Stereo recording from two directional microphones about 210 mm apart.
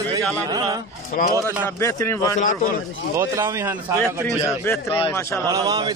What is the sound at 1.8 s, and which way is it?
Speech, 15° left (ahead or behind).